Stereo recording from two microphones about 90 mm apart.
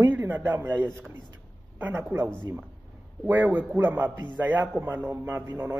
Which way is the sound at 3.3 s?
20° right (ahead or behind).